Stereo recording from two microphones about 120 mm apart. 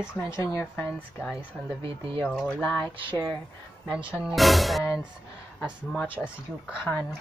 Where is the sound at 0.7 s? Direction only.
5° left (ahead or behind).